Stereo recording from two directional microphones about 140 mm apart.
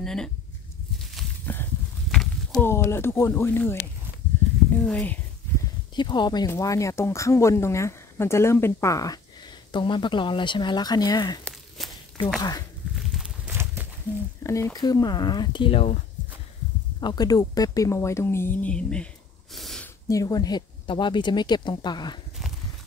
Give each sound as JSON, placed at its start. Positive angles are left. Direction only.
{"t": 0.0, "sound": "speech", "side_deg": 5}
{"t": 1.4, "sound": "a sound", "side_deg": 15}
{"t": 2.0, "sound": "a sound", "side_deg": 0}
{"t": 2.6, "sound": "speech", "side_deg": 20}
{"t": 5.9, "sound": "speech", "side_deg": 35}
{"t": 11.8, "sound": "walk", "side_deg": 0}
{"t": 12.4, "sound": "speech", "side_deg": 25}
{"t": 12.9, "sound": "walk", "side_deg": 0}
{"t": 13.5, "sound": "a sound", "side_deg": -15}
{"t": 14.4, "sound": "speech", "side_deg": 20}
{"t": 17.0, "sound": "speech", "side_deg": 30}
{"t": 19.5, "sound": "a sound", "side_deg": 0}
{"t": 20.1, "sound": "speech", "side_deg": 25}